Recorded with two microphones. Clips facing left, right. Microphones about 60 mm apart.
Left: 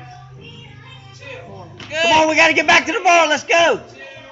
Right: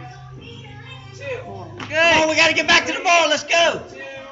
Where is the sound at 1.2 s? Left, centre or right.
Right.